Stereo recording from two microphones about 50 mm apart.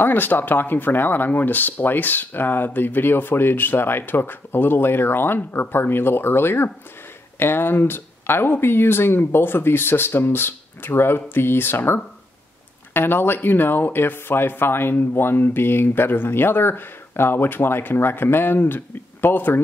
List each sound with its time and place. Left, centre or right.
0.0 s speech: left